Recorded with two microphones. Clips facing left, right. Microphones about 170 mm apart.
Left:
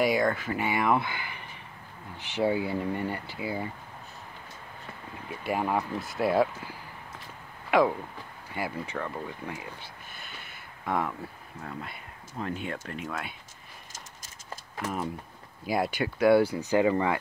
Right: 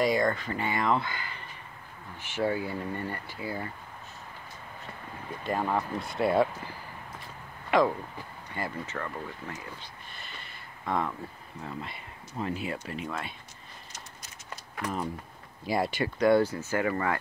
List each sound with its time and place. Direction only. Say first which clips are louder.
0.0 s speech: left 1 dB; 5° left (ahead or behind)
5.4 s speech: left 1 dB; 10° left (ahead or behind)
8.5 s speech: left 2 dB; 5° left (ahead or behind)
10.1 s a sound: even; centre (ahead or behind)
11.6 s speech: right 1 dB; centre (ahead or behind)
14.8 s speech: even; 5° left (ahead or behind)